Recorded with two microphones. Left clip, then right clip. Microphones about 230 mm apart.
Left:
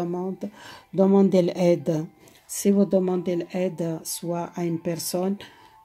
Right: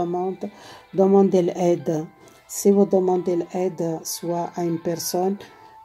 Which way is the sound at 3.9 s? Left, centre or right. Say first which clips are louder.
Right 4 dB; left.